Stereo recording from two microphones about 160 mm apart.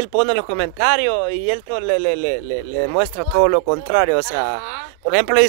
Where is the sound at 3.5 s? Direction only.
50° right (ahead or behind).